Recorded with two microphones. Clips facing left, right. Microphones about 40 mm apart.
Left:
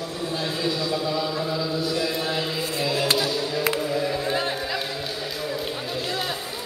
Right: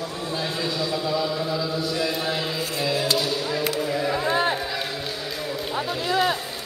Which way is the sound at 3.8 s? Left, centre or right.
Centre.